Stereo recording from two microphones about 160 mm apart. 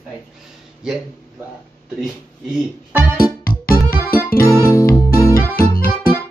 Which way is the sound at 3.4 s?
65° left (ahead or behind).